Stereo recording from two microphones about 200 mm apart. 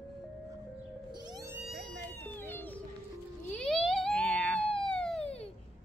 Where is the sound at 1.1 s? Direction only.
20° right (ahead or behind).